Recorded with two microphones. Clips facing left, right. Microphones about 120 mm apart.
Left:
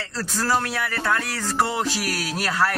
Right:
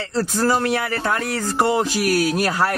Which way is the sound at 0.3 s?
20° right (ahead or behind).